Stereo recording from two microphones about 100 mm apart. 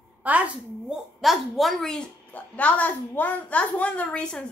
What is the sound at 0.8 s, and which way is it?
A woman's voice, centre (ahead or behind).